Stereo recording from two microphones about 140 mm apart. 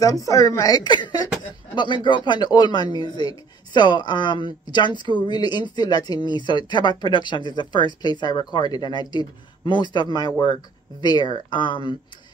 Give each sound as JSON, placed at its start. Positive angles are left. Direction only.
{"t": 0.0, "sound": "speech", "side_deg": 25}